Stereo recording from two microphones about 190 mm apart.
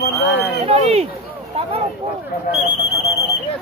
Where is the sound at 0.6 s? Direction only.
30° right (ahead or behind).